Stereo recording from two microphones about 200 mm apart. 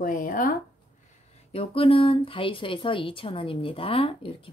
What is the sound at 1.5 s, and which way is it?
Speech, 30° left (ahead or behind).